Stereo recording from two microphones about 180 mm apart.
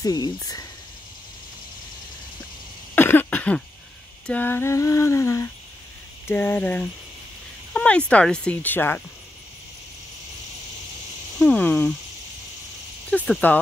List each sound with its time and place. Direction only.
0.0 s speech: 20° left (ahead or behind)
3.0 s cough: 10° left (ahead or behind)
4.3 s speech: 10° left (ahead or behind)
11.3 s speech: 5° left (ahead or behind)
13.1 s speech: 10° left (ahead or behind)